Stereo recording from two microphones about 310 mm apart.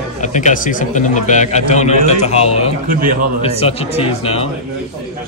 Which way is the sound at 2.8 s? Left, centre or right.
Right.